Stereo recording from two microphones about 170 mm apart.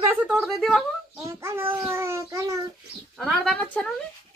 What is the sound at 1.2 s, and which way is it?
A child's voice, 15° right (ahead or behind).